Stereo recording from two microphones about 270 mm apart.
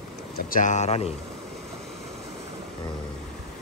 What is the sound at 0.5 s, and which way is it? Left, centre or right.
Speech, left.